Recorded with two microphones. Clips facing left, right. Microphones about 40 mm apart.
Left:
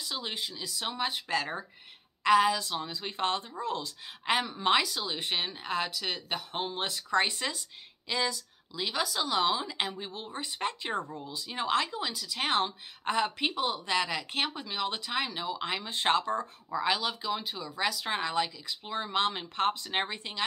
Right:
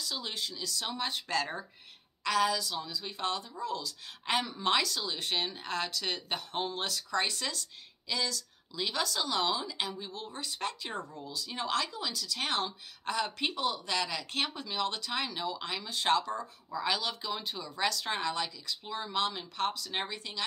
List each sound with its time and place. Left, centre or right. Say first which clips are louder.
0.0 s speech: left 1 dB; left
2.2 s speech: left 5 dB; left
4.3 s speech: left 3 dB; centre
8.7 s speech: left 1 dB; centre; by 13.3 s left
13.4 s speech: left 2 dB; centre
15.7 s speech: left 1 dB; left
16.7 s speech: left 3 dB; centre